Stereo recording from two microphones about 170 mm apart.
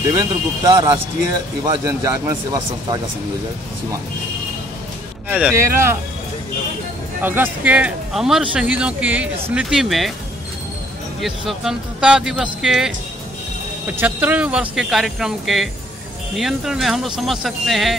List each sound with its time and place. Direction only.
0.1 s a man's voice: 20° right (ahead or behind)
5.3 s speech: 10° right (ahead or behind)
7.2 s speech: 10° right (ahead or behind)
11.1 s speech: centre (ahead or behind)